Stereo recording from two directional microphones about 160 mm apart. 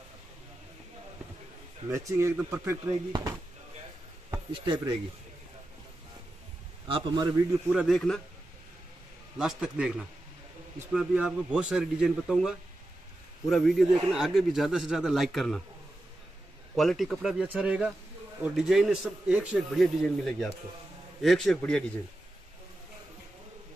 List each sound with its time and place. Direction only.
1.9 s speech: 20° right (ahead or behind)
2.9 s speech: 25° right (ahead or behind)
6.9 s speech: 30° right (ahead or behind)
7.7 s a man's voice: centre (ahead or behind)
9.4 s a man's voice: 5° right (ahead or behind)
16.7 s a man's voice: centre (ahead or behind)